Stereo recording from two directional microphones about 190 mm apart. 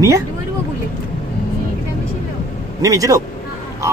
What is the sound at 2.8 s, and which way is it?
Speech, 15° right (ahead or behind).